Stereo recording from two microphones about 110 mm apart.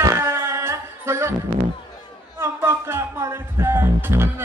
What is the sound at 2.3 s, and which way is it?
Music, 25° right (ahead or behind).